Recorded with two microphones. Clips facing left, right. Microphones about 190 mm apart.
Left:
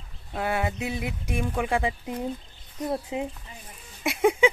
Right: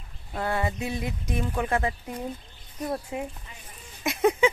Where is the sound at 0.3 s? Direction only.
5° left (ahead or behind).